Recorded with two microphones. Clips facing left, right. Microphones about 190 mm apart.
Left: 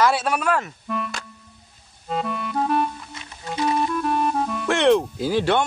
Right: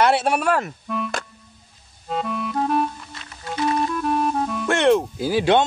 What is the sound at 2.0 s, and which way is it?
Clarinet, centre (ahead or behind).